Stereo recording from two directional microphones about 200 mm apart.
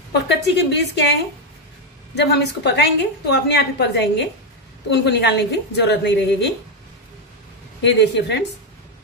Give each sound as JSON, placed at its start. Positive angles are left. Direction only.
{"t": 0.3, "sound": "a woman's voice", "side_deg": 60}
{"t": 2.1, "sound": "a woman's voice", "side_deg": 60}
{"t": 7.8, "sound": "a woman's voice", "side_deg": 60}